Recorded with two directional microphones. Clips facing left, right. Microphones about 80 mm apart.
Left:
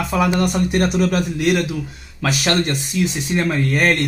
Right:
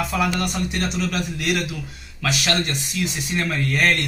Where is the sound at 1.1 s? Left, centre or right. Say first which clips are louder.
Left 6 dB; left.